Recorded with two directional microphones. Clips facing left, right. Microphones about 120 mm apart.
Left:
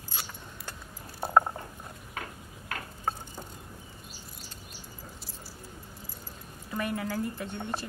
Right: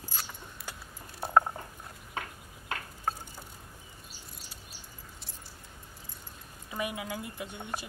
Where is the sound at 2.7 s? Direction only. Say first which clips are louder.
Right 1 dB; 25° right (ahead or behind).